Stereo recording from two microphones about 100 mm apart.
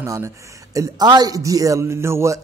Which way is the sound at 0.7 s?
45° right (ahead or behind).